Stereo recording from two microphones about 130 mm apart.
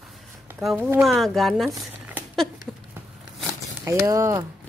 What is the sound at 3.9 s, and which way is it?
Speech, 25° right (ahead or behind).